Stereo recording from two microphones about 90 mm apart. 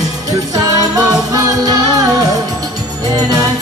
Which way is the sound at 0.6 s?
40° right (ahead or behind).